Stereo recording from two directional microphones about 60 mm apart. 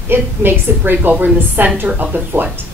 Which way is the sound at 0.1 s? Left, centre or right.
Right.